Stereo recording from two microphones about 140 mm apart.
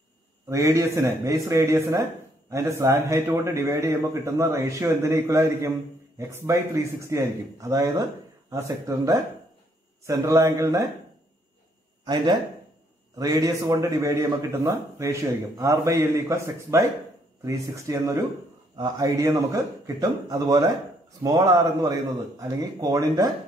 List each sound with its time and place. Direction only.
0.5 s a man's voice: 20° right (ahead or behind)
12.0 s a man's voice: 30° right (ahead or behind)